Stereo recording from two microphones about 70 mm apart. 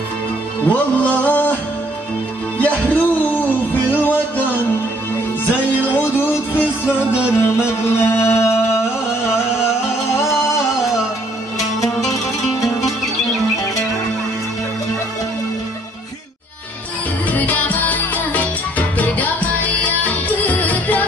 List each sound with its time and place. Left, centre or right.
0.7 s music: left
2.6 s music: left
10.1 s music: left
11.5 s music: left
17.3 s music: left